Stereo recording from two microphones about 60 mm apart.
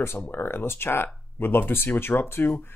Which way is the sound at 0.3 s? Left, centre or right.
Left.